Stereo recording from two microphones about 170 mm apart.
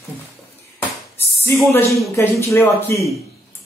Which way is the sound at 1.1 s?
15° left (ahead or behind).